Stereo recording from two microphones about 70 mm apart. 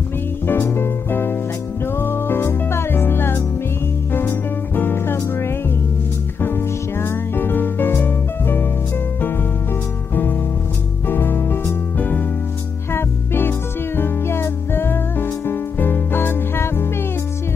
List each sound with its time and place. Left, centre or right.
0.5 s music: left
10.1 s music: left